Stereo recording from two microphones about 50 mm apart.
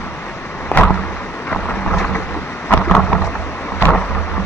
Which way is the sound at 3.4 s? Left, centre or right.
Left.